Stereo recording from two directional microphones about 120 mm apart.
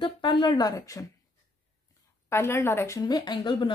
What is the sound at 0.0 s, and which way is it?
Speech, 40° left (ahead or behind).